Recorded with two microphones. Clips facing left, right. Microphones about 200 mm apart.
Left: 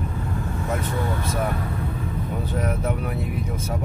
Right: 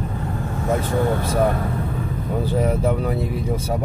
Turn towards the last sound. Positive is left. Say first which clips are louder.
# right 6 dB
turn(degrees=-35)  # may be behind; listen again after turning